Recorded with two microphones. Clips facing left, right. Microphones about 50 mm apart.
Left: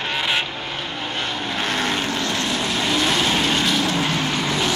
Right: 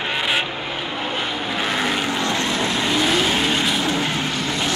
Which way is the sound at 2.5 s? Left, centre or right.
Centre.